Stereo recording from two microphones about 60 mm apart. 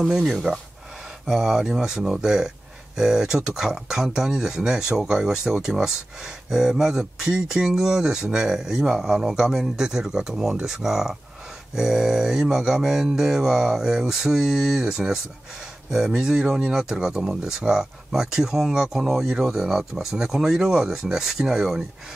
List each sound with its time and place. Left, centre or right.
0.0 s speech: centre